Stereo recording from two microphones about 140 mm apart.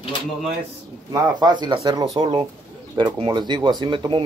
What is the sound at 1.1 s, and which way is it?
Speech, 30° right (ahead or behind).